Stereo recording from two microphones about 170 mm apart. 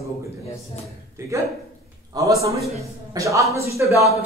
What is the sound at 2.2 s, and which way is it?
A man's voice, 20° right (ahead or behind).